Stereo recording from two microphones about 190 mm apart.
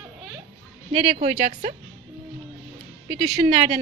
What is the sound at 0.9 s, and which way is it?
Speech, 35° right (ahead or behind).